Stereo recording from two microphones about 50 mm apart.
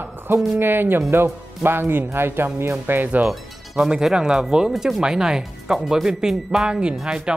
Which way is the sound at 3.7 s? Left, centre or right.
Centre.